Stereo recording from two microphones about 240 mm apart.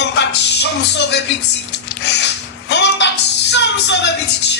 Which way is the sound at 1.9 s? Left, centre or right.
Left.